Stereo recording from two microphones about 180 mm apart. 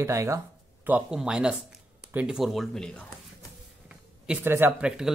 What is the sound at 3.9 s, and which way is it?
Speech, 5° right (ahead or behind).